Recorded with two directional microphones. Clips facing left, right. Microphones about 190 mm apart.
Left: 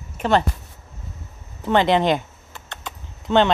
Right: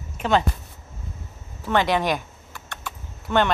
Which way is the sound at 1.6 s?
20° left (ahead or behind).